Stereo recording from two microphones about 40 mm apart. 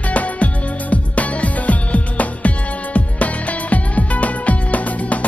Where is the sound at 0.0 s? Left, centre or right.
Left.